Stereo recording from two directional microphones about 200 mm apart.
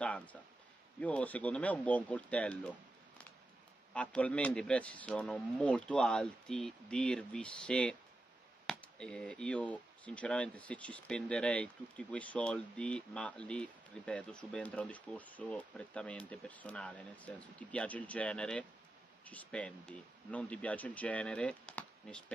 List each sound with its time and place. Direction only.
0.0 s speech: 5° left (ahead or behind)